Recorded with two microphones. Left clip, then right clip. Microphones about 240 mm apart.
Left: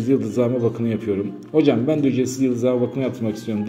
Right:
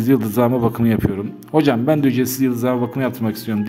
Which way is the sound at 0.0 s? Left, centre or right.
Right.